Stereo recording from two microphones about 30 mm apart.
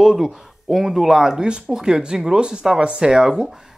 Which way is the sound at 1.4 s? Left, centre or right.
Right.